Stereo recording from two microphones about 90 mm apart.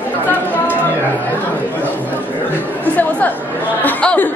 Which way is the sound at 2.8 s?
20° left (ahead or behind).